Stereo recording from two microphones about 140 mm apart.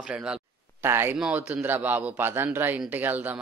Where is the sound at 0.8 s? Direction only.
15° right (ahead or behind).